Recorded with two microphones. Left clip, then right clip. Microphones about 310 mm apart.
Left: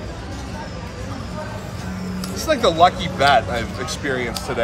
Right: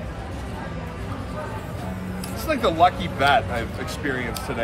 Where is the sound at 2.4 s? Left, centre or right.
Left.